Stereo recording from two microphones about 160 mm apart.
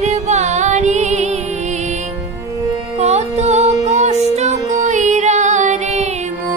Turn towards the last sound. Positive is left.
turn(degrees=-45)  # may be behind; listen again after turning